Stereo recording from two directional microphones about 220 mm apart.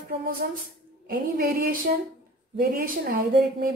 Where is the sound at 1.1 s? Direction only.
40° right (ahead or behind).